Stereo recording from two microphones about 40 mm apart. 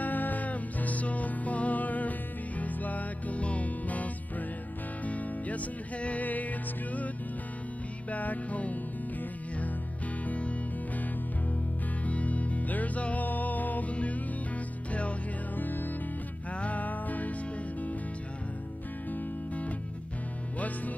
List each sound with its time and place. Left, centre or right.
0.0 s music: left
8.1 s music: left
10.2 s music: left
12.0 s music: left
14.9 s music: left
15.5 s music: left
16.5 s music: left
19.1 s music: left